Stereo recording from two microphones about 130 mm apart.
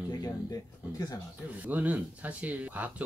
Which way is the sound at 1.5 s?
10° right (ahead or behind).